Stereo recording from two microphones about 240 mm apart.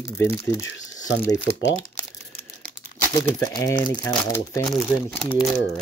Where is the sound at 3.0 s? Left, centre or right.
Centre.